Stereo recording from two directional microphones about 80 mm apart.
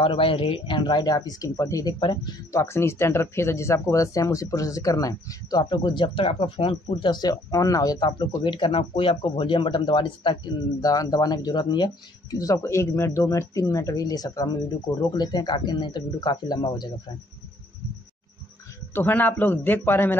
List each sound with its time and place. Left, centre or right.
0.0 s speech: left
2.0 s speech: left
2.5 s speech: left
10.8 s speech: left
18.9 s speech: left